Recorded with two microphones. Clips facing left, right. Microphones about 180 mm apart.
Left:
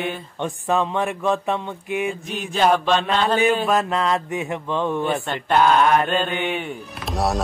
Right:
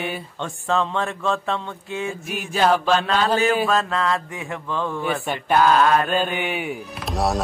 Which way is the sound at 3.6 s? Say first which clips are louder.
Left 1 dB; 20° left (ahead or behind).